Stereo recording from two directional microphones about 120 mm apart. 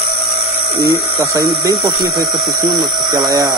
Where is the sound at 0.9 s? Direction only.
25° right (ahead or behind).